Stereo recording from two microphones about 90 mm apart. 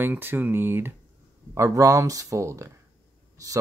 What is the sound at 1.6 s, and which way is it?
Speech, 35° right (ahead or behind).